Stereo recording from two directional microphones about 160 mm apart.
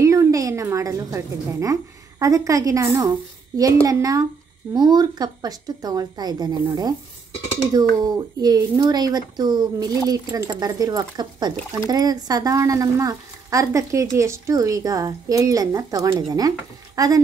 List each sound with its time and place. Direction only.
0.0 s a woman's voice: 20° right (ahead or behind)